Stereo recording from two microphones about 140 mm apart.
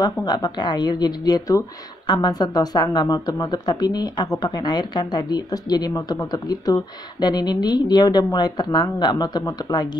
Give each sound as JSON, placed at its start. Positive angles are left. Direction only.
{"t": 0.0, "sound": "speech", "side_deg": 30}